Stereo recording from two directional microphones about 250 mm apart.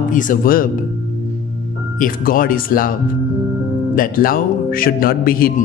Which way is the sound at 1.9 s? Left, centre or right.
Left.